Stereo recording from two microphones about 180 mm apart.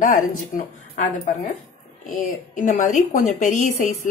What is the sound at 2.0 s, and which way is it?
A woman's voice, 45° left (ahead or behind).